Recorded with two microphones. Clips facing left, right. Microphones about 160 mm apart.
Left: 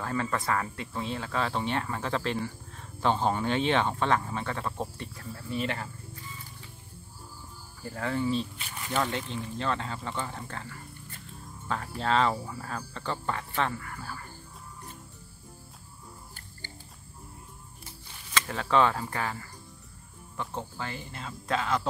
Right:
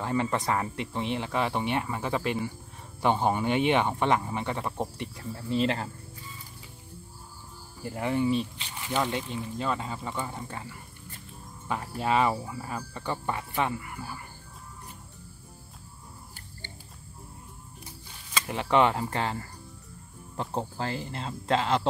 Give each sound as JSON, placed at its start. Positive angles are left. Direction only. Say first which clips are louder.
{"t": 0.0, "sound": "speech", "louder": "right 3 dB", "side_deg": -20}
{"t": 7.8, "sound": "speech", "louder": "right 3 dB", "side_deg": -20}
{"t": 18.3, "sound": "speech", "louder": "right 1 dB", "side_deg": -15}
{"t": 20.3, "sound": "speech", "louder": "right 4 dB", "side_deg": -35}